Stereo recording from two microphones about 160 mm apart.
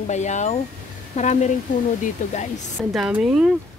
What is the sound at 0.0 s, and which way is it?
Speech, 45° left (ahead or behind).